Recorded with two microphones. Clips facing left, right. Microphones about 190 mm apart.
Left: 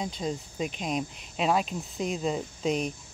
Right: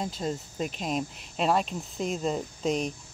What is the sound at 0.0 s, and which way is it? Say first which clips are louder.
Speech: even; centre (ahead or behind).